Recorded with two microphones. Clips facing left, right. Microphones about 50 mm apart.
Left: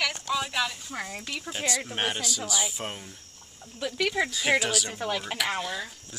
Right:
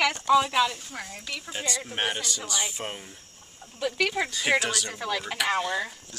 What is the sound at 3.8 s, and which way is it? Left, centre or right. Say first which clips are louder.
Speech: right 2 dB; right.